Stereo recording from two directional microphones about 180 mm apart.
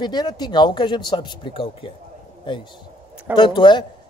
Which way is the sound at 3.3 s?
25° left (ahead or behind).